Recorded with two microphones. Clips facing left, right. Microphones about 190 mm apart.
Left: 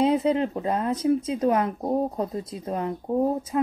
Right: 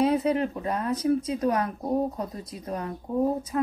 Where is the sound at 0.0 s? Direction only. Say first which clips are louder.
Left 2 dB; 25° left (ahead or behind).